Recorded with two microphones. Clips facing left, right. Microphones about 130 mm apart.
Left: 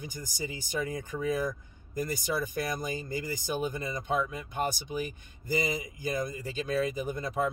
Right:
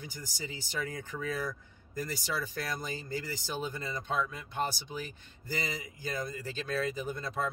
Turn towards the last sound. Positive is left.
turn(degrees=15)  # may be behind; listen again after turning